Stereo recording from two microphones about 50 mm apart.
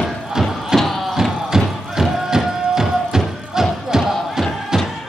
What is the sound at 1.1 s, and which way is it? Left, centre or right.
Music, centre.